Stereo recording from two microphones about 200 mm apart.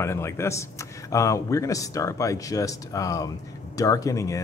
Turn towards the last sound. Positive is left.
turn(degrees=15)  # may be behind; listen again after turning